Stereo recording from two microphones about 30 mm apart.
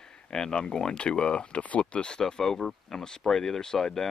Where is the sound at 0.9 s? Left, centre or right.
Left.